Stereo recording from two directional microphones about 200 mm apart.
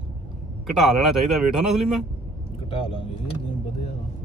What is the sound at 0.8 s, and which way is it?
Speech, centre (ahead or behind).